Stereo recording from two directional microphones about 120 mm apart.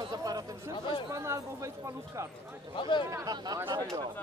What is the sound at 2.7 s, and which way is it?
Speech, 45° left (ahead or behind).